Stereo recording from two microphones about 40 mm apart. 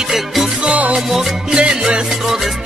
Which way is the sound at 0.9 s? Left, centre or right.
Centre.